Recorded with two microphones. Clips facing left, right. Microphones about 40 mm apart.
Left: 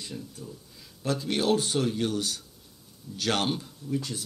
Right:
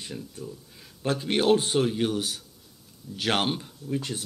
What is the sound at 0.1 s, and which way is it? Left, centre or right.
Speech, centre.